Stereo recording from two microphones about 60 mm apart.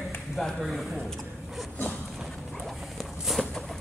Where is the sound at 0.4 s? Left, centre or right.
Centre.